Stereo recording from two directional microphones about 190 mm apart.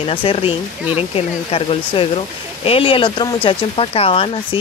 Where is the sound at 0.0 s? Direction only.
30° left (ahead or behind).